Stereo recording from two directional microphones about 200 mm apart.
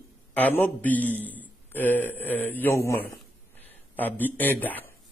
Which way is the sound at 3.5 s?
10° left (ahead or behind).